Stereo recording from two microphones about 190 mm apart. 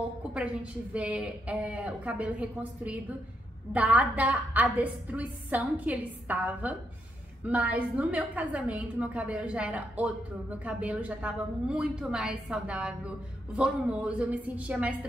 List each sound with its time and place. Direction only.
0.3 s a woman's voice: 5° right (ahead or behind)